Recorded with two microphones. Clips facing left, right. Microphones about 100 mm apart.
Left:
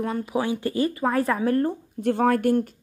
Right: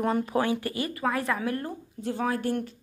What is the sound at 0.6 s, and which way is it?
A woman's voice, 30° left (ahead or behind).